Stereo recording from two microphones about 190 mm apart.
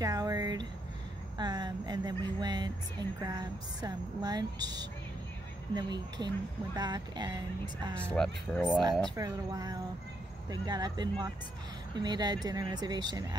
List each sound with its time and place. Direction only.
0.0 s a sound: 20° right (ahead or behind)
1.4 s speech: 20° right (ahead or behind)
8.1 s speech: 5° left (ahead or behind)
9.1 s speech: 20° right (ahead or behind)